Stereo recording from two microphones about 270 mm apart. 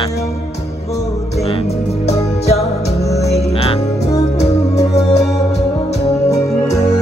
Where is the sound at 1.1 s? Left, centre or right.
Left.